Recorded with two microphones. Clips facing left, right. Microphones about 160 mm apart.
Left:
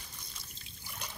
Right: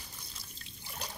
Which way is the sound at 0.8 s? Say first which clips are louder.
Right 2 dB; 35° right (ahead or behind).